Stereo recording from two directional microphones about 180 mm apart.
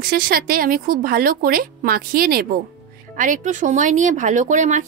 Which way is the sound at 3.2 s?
45° right (ahead or behind).